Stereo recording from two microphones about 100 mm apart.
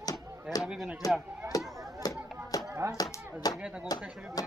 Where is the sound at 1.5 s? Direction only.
40° left (ahead or behind).